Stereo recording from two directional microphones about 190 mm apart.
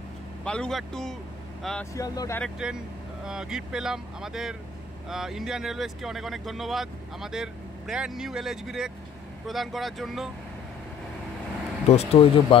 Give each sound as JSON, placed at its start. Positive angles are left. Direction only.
{"t": 0.4, "sound": "speech", "side_deg": 5}
{"t": 2.0, "sound": "speech", "side_deg": 20}
{"t": 2.4, "sound": "speech", "side_deg": -5}
{"t": 11.9, "sound": "speech", "side_deg": 30}